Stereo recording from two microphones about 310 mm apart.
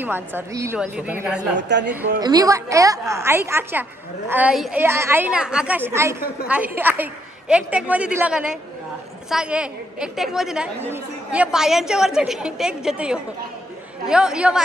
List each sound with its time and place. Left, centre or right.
0.0 s a woman's voice: centre
1.6 s a woman's voice: right
2.0 s a woman's voice: centre